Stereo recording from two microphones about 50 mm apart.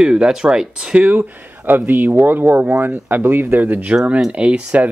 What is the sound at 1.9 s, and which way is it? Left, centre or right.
Speech, right.